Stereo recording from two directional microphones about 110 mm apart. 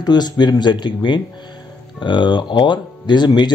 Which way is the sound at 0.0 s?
40° left (ahead or behind).